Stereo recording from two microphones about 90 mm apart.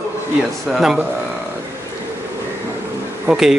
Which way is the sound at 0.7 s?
5° right (ahead or behind).